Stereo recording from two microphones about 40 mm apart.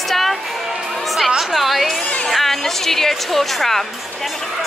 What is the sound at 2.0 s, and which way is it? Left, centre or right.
Speech, left.